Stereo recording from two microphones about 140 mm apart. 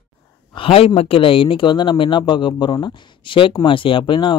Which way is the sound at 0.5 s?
40° left (ahead or behind).